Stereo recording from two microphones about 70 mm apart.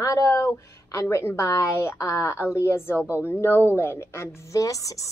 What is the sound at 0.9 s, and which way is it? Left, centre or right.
A woman's voice, left.